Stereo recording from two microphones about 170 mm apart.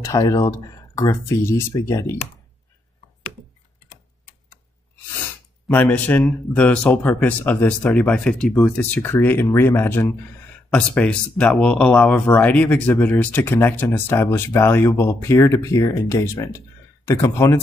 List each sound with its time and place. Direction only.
0.0 s speech: 20° left (ahead or behind)
5.7 s speech: 10° left (ahead or behind)